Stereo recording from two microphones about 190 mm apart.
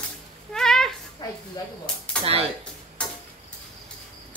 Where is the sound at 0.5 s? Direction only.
Centre (ahead or behind).